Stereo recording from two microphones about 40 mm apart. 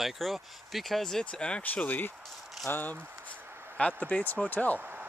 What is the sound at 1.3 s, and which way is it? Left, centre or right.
Speech, left.